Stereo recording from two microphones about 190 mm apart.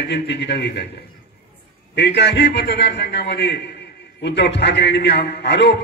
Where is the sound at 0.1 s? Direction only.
65° left (ahead or behind).